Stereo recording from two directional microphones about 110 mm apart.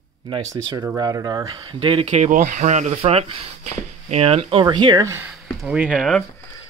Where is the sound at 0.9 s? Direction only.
35° right (ahead or behind).